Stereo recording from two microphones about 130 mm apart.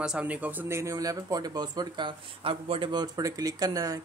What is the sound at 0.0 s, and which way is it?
Speech, 5° right (ahead or behind).